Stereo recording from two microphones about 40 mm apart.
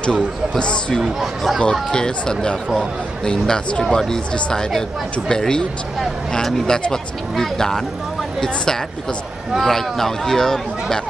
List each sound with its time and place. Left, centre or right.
0.0 s speech: left; by 11.0 s centre